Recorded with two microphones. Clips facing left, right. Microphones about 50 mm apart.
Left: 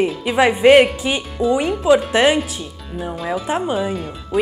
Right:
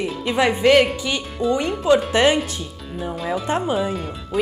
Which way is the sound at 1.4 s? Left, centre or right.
Centre.